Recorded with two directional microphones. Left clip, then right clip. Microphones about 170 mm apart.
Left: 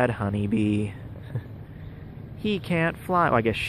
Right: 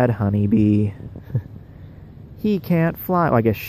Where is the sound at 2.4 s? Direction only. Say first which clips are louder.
Right 4 dB; 60° right (ahead or behind).